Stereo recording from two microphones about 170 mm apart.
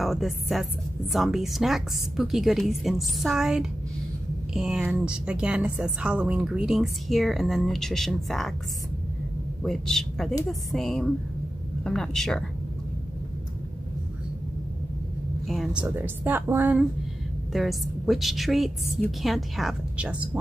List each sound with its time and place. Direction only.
0.0 s a woman's voice: centre (ahead or behind)
9.6 s a man's voice: 5° left (ahead or behind)
15.4 s a woman's voice: centre (ahead or behind)
17.5 s a woman's voice: centre (ahead or behind)